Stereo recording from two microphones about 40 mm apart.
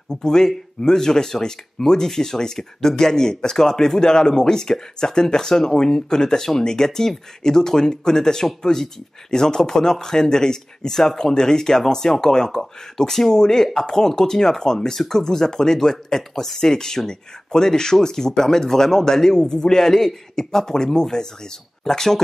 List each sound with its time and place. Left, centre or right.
0.1 s speech: centre